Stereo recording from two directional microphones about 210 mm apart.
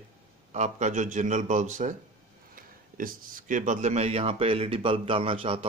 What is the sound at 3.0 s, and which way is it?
Speech, 40° right (ahead or behind).